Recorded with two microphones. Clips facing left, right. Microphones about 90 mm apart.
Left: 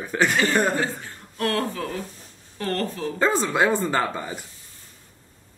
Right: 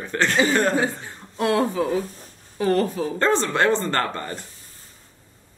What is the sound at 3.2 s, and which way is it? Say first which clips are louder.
Speech: even; 5° left (ahead or behind).